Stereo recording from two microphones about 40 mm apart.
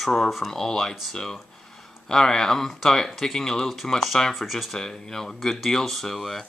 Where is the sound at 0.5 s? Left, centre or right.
Centre.